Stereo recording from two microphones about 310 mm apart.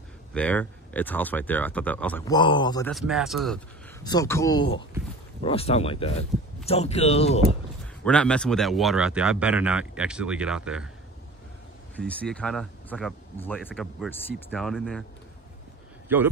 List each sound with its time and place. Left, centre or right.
0.3 s speech: centre
2.9 s speech: centre
4.0 s speech: centre
8.0 s speech: centre
11.9 s speech: centre
16.1 s speech: centre